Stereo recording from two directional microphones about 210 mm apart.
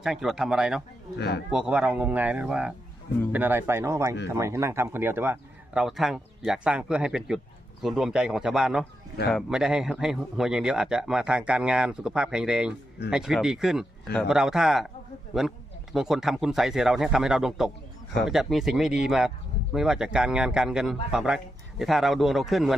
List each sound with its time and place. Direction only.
0.0 s speech: centre (ahead or behind)
1.1 s speech: 50° left (ahead or behind)
1.5 s speech: 5° right (ahead or behind)